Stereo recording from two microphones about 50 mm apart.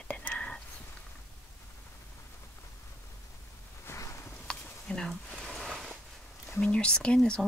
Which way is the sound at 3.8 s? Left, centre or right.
Left.